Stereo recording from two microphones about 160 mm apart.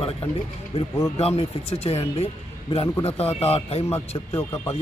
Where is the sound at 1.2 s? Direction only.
40° left (ahead or behind).